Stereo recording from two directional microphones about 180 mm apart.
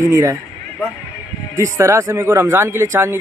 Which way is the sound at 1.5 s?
15° right (ahead or behind).